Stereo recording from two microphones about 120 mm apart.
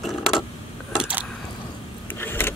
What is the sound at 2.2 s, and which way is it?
Vehicle, 20° left (ahead or behind).